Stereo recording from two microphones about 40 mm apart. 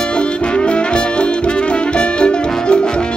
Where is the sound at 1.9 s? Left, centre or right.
Left.